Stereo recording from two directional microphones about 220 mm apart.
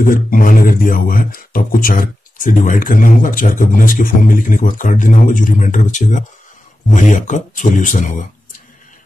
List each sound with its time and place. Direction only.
0.0 s speech: 40° left (ahead or behind)